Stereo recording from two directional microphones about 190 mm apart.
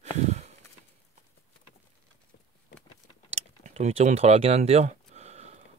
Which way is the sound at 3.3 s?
35° right (ahead or behind).